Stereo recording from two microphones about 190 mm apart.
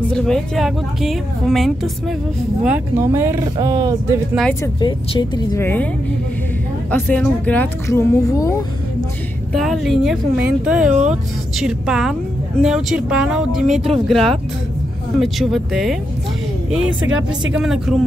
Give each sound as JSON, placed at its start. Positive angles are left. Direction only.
{"t": 0.1, "sound": "a woman's voice", "side_deg": 0}
{"t": 2.6, "sound": "speech", "side_deg": -10}
{"t": 4.7, "sound": "speech", "side_deg": 25}
{"t": 5.6, "sound": "speech", "side_deg": 10}
{"t": 6.9, "sound": "speech", "side_deg": 10}
{"t": 9.5, "sound": "a woman's voice", "side_deg": 0}
{"t": 10.9, "sound": "speech", "side_deg": -40}
{"t": 11.5, "sound": "a woman's voice", "side_deg": -5}
{"t": 17.6, "sound": "a woman's voice", "side_deg": 0}